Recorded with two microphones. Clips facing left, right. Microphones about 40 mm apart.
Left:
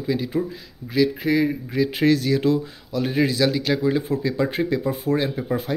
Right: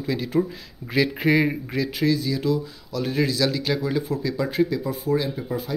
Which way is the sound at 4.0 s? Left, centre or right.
Left.